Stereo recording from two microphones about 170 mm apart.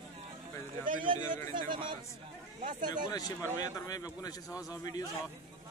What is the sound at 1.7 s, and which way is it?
Speech, 30° right (ahead or behind).